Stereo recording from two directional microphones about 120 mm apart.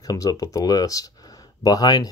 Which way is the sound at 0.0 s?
30° left (ahead or behind).